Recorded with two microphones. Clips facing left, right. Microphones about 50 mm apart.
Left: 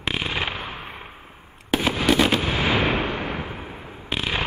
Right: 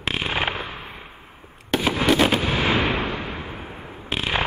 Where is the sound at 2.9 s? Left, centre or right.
Left.